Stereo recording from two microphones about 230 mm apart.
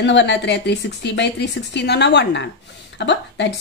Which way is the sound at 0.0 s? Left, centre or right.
Left.